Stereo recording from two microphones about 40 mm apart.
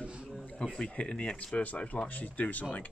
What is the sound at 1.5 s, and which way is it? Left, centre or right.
Speech, left.